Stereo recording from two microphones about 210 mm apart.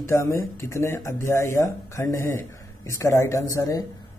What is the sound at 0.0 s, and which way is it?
Speech, 15° left (ahead or behind).